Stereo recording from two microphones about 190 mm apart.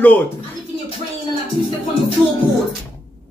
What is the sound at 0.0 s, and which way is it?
Speech, 10° left (ahead or behind).